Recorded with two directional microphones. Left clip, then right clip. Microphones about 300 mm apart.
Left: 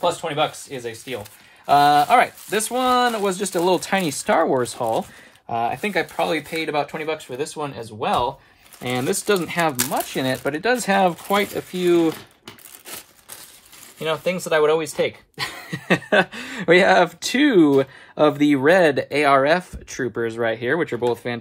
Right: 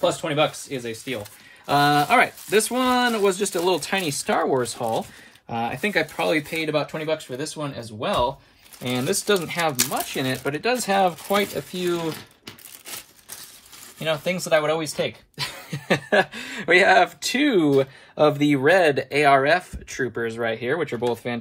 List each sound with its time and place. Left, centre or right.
0.0 s speech: centre
8.8 s speech: left
15.6 s speech: left